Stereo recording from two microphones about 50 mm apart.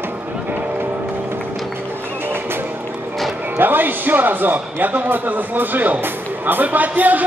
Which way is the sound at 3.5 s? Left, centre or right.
Right.